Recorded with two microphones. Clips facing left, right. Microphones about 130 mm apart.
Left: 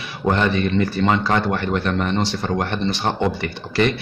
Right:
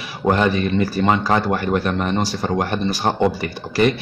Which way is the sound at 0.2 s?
15° right (ahead or behind).